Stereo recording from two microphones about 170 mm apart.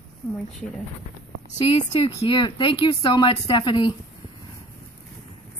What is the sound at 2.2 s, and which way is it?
Speech, 25° left (ahead or behind).